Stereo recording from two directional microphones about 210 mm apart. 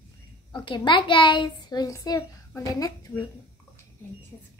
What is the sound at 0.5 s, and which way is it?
A child's voice, 20° left (ahead or behind).